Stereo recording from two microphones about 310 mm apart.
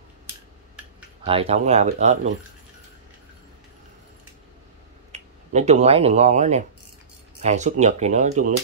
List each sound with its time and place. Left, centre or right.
1.2 s speech: centre
5.1 s speech: right